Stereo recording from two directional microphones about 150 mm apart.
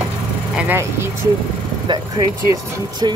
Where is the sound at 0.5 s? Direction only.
15° right (ahead or behind).